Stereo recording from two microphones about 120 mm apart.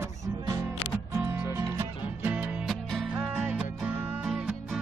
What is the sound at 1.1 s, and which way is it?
Music, 25° right (ahead or behind).